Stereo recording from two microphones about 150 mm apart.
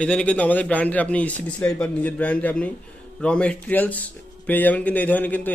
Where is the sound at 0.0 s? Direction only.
5° left (ahead or behind).